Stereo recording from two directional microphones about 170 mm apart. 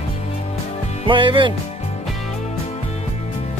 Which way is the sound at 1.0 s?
30° right (ahead or behind).